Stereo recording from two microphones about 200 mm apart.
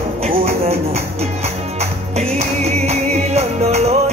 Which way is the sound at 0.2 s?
30° right (ahead or behind).